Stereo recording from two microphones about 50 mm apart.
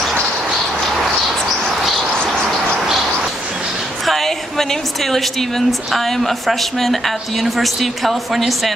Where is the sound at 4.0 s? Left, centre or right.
Centre.